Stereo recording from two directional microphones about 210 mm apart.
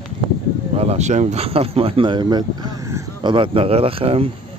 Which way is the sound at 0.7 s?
30° right (ahead or behind).